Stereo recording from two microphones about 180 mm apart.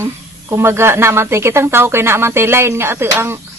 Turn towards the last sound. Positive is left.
turn(degrees=-15)  # may be behind; listen again after turning